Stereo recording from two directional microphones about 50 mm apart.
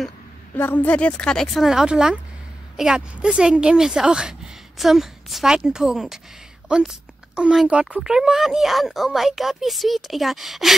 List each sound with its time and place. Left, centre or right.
0.6 s a woman's voice: left
0.9 s speech: left
1.6 s a woman's voice: centre
4.7 s a woman's voice: centre
8.0 s speech: centre